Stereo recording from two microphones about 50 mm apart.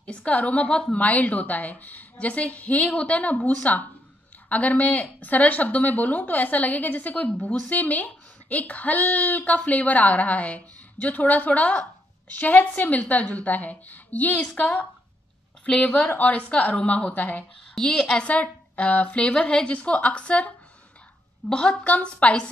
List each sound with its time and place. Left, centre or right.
0.0 s a woman's voice: left
17.7 s a woman's voice: centre
21.8 s a woman's voice: left